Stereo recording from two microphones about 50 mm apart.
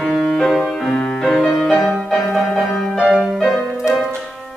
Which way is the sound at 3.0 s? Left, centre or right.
Centre.